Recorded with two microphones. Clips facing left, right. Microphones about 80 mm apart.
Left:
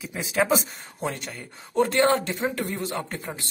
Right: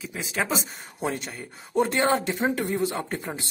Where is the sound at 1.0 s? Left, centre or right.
Centre.